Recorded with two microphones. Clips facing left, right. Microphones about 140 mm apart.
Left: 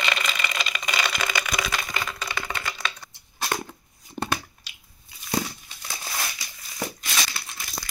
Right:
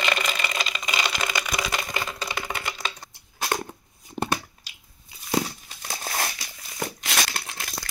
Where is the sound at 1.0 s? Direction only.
15° right (ahead or behind).